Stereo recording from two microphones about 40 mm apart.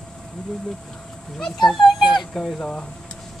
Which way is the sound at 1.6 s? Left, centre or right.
Centre.